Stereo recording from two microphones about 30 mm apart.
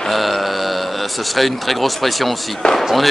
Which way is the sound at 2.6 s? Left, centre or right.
Left.